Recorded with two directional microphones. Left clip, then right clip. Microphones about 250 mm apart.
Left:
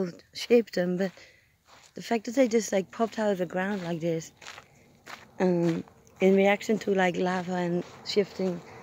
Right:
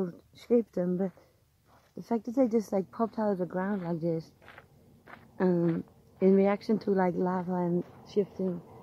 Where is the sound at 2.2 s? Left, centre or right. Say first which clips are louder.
Left 3 dB; centre.